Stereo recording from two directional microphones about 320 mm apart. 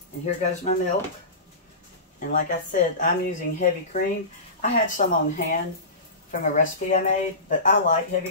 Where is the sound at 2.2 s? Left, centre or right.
Left.